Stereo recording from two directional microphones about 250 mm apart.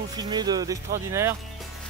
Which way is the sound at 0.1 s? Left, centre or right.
Centre.